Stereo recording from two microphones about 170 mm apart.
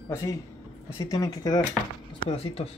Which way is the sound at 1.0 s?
20° left (ahead or behind).